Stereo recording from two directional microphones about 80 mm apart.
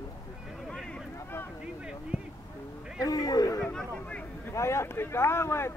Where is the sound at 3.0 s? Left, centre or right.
Left.